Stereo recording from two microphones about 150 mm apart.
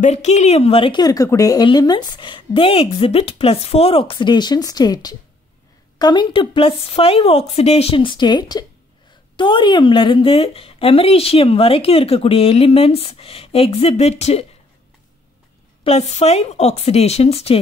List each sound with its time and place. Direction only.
0.0 s speech: 50° left (ahead or behind)
15.8 s speech: 45° left (ahead or behind)